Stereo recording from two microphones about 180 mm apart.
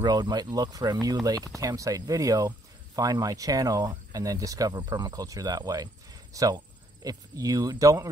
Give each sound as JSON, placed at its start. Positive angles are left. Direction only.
{"t": 0.0, "sound": "speech", "side_deg": -20}